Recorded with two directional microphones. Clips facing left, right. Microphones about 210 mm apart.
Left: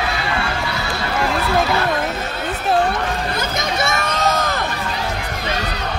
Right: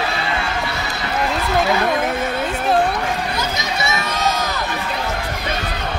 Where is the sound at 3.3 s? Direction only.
50° left (ahead or behind).